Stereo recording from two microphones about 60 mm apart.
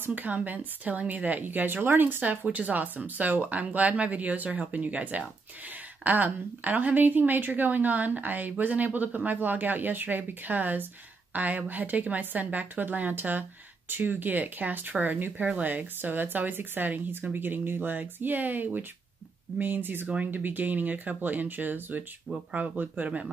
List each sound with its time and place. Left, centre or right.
0.0 s a woman's voice: right
2.4 s a woman's voice: right